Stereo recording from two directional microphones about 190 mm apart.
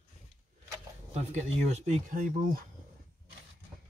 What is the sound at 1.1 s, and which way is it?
Speech, 35° right (ahead or behind).